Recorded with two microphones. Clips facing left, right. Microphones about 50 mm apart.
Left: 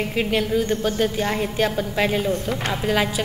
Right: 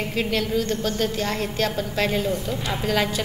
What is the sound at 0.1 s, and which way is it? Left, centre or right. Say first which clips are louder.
A woman's voice: left 1 dB; centre.